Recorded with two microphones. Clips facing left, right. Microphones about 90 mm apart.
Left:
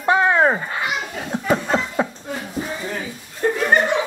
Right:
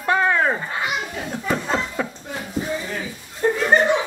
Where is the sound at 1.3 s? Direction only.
25° left (ahead or behind).